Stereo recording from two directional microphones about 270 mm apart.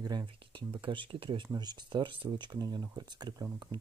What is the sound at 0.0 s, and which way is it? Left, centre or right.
Speech, centre.